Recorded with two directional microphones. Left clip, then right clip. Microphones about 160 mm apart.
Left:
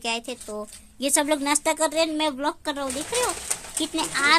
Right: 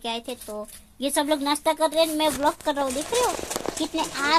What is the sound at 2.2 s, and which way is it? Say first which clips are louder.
Speech: right 3 dB; 35° right (ahead or behind).